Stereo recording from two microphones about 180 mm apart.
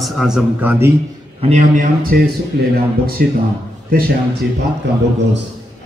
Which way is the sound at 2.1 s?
55° right (ahead or behind).